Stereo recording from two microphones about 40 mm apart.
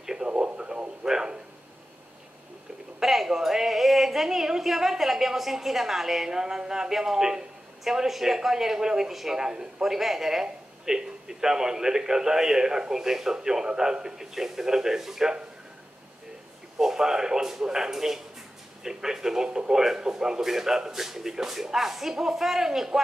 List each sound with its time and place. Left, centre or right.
0.0 s radio: centre
0.6 s radio: right
1.0 s a sound: centre
3.0 s a woman's voice: centre
16.7 s a woman's voice: centre